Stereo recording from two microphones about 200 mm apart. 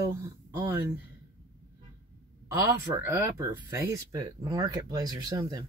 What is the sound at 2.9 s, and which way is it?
Speech, 15° right (ahead or behind).